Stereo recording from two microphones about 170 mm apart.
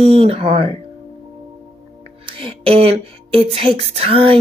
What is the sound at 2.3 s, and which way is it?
Speech, 35° right (ahead or behind).